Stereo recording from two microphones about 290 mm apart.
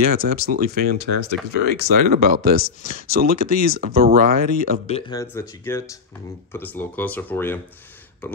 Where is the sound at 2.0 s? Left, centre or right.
Right.